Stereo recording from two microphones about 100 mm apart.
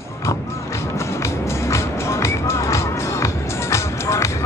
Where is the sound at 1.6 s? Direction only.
30° left (ahead or behind).